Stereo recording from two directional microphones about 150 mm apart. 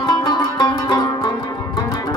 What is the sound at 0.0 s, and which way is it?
Music, 25° left (ahead or behind).